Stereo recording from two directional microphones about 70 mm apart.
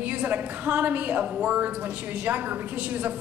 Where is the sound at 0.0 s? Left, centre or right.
Right.